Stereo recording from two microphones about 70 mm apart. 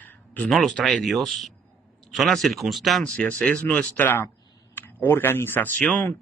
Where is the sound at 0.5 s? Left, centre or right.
Centre.